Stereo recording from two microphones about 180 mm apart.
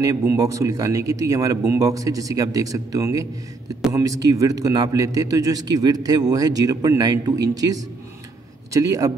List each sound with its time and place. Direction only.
0.0 s a man's voice: 20° right (ahead or behind)